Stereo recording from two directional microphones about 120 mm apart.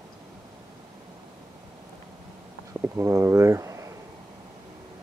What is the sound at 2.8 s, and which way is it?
Speech, 25° right (ahead or behind).